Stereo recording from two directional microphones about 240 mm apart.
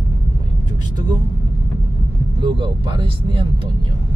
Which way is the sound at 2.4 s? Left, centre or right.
Centre.